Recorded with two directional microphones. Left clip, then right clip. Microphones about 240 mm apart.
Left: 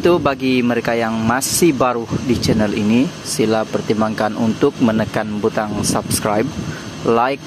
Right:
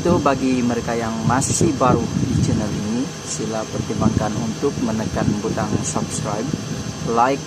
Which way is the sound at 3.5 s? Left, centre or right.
Left.